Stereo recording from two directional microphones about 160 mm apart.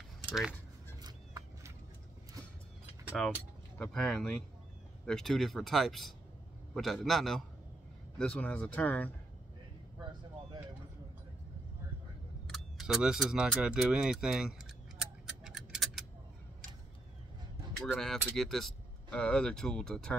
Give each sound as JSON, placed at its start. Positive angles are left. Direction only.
{"t": 0.3, "sound": "speech", "side_deg": 0}
{"t": 1.0, "sound": "a sound", "side_deg": -25}
{"t": 3.7, "sound": "speech", "side_deg": 5}
{"t": 12.4, "sound": "speech", "side_deg": 0}
{"t": 15.0, "sound": "tick-tock", "side_deg": -5}
{"t": 17.8, "sound": "speech", "side_deg": 0}